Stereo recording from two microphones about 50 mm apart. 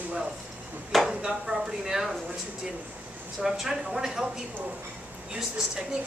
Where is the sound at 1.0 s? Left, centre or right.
Centre.